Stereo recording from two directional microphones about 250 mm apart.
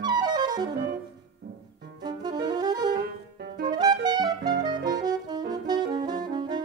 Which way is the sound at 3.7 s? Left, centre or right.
Centre.